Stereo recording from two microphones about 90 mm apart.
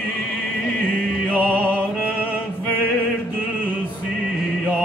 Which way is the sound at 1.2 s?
15° left (ahead or behind).